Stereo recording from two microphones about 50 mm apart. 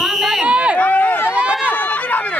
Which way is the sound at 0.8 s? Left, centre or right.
Left.